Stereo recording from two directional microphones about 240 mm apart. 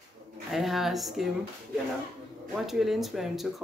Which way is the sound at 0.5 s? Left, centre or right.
Centre.